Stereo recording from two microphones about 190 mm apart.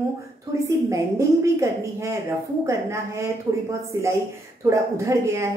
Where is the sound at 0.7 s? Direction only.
15° right (ahead or behind).